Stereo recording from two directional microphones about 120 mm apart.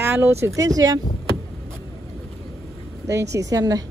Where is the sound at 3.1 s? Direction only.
25° right (ahead or behind).